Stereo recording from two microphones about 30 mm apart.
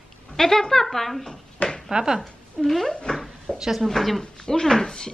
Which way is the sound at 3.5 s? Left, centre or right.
Left.